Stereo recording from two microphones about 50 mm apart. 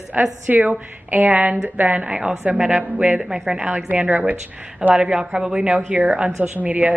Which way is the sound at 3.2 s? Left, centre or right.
Centre.